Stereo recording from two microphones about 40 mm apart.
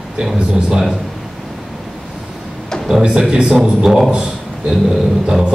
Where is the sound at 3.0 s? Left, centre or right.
Right.